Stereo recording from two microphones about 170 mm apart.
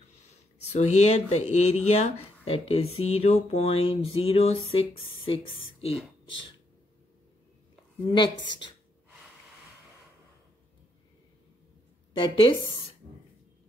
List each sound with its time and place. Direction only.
0.7 s speech: 40° left (ahead or behind)
8.1 s speech: 25° left (ahead or behind)
12.1 s speech: 30° left (ahead or behind)